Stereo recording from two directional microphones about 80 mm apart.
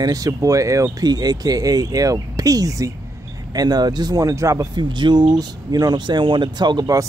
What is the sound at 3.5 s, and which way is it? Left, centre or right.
Speech, right.